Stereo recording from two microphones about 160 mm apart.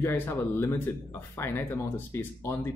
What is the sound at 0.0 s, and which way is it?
Speech, 15° left (ahead or behind).